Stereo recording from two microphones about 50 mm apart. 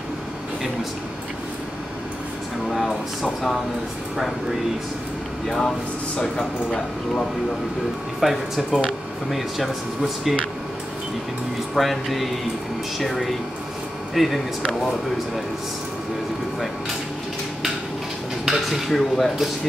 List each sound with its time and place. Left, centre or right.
2.7 s speech: centre
6.1 s speech: centre
8.2 s speech: centre
11.7 s speech: centre
18.4 s speech: centre
18.9 s speech: centre